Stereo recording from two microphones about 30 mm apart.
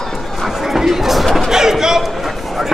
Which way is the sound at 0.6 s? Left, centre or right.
Centre.